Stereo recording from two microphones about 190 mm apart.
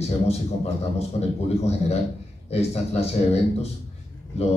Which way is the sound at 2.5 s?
35° left (ahead or behind).